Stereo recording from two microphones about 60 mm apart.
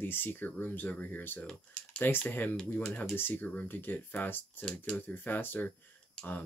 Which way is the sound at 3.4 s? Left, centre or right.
Left.